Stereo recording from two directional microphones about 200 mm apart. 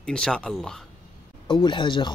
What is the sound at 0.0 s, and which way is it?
Speech, 5° left (ahead or behind).